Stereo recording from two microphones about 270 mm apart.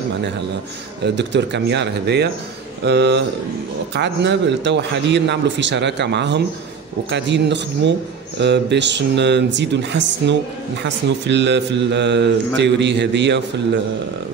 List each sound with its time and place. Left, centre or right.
1.0 s speech: right